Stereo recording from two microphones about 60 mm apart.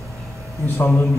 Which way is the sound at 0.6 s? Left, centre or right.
Left.